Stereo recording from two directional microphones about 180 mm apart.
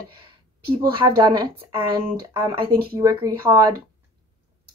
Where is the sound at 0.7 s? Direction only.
25° right (ahead or behind).